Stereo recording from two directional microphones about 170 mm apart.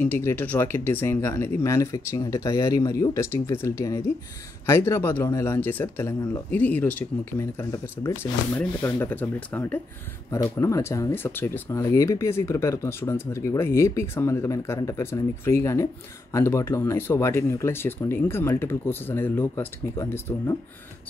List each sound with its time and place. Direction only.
0.0 s speech: 15° left (ahead or behind)